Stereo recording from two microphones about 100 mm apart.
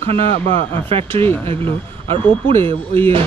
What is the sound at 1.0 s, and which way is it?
Speech, 20° left (ahead or behind).